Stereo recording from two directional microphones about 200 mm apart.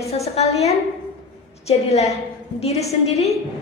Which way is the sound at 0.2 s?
30° left (ahead or behind).